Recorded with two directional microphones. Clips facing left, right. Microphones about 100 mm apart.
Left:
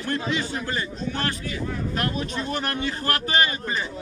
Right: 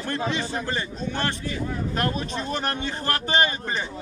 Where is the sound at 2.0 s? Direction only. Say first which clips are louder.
Right 1 dB; 30° right (ahead or behind).